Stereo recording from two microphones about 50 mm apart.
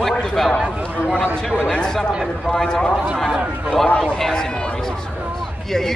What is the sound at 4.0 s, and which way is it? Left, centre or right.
Speech, centre.